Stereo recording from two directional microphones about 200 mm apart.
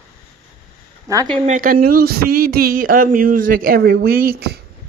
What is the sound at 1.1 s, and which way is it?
Speech, 15° right (ahead or behind).